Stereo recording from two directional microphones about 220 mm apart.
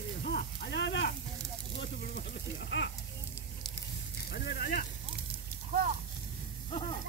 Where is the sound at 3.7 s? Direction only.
50° left (ahead or behind).